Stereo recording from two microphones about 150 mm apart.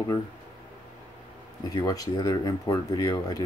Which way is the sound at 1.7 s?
25° left (ahead or behind).